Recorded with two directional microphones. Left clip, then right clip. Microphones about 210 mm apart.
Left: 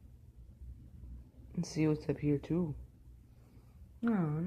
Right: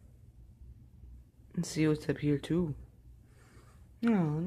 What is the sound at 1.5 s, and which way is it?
Speech, 15° right (ahead or behind).